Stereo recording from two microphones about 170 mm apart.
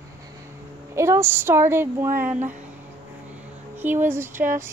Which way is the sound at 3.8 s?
10° right (ahead or behind).